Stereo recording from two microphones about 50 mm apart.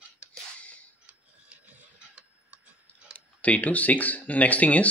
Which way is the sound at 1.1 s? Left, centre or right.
Right.